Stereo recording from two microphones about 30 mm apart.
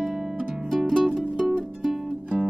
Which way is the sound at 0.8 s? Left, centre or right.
Centre.